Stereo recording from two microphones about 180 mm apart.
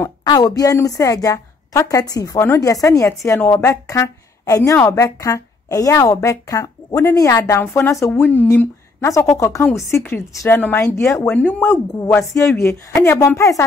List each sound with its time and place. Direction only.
0.0 s a woman's voice: 20° left (ahead or behind)